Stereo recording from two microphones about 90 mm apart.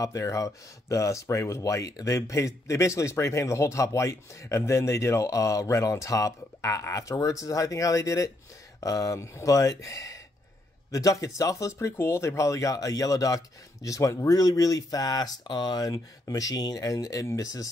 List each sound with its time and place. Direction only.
0.0 s speech: 35° left (ahead or behind)